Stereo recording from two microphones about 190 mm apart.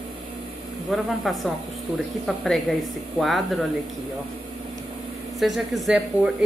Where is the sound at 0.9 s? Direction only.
Centre (ahead or behind).